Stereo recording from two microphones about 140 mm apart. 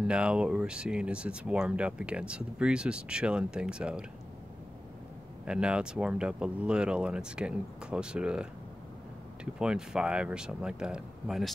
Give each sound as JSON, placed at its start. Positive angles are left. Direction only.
{"t": 0.0, "sound": "speech", "side_deg": -5}
{"t": 5.4, "sound": "speech", "side_deg": -5}